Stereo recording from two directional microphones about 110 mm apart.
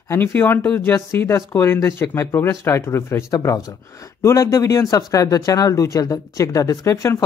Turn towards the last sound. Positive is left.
turn(degrees=30)  # may be behind; listen again after turning